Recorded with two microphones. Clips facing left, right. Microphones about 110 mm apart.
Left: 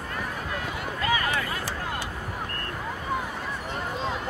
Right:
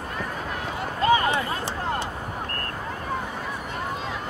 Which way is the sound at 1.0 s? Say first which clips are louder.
Right 7 dB; 30° right (ahead or behind).